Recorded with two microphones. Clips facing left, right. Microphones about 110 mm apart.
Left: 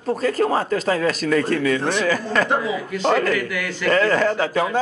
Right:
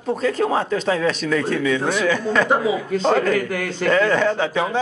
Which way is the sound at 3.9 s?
Centre (ahead or behind).